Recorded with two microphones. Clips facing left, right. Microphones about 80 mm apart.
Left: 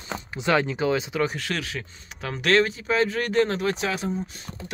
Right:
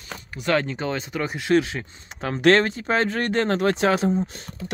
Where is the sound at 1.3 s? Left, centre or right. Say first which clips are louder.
Right 9 dB; right.